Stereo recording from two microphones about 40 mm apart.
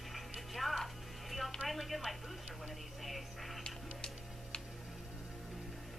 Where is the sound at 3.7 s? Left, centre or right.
Left.